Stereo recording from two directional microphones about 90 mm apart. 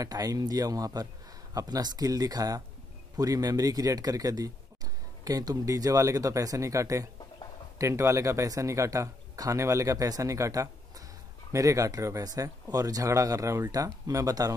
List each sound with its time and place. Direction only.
0.0 s speech: 45° right (ahead or behind)